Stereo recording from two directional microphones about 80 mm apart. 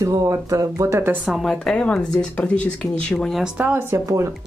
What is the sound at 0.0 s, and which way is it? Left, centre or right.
Speech, right.